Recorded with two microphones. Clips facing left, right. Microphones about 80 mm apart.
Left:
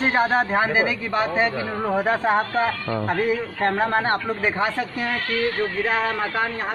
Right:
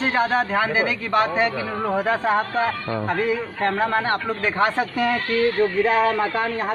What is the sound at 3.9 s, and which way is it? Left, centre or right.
Speech, left.